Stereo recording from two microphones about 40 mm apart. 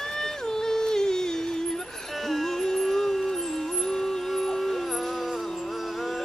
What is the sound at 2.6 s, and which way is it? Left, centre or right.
Music, centre.